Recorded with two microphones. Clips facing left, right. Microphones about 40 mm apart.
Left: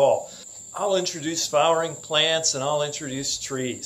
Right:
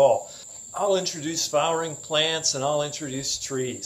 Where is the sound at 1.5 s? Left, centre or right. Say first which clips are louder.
Left 4 dB; centre.